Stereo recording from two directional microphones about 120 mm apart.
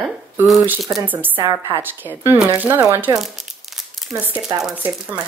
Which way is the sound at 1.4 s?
20° right (ahead or behind).